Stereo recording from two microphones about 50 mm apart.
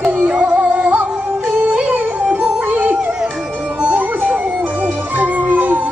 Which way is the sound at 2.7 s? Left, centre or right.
Right.